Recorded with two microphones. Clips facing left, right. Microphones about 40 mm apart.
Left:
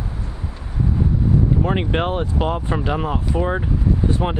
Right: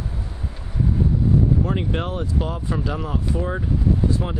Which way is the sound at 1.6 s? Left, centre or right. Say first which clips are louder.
Left 4 dB; left.